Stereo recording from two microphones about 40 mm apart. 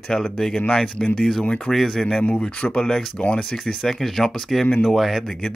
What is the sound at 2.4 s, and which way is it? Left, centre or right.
Speech, left.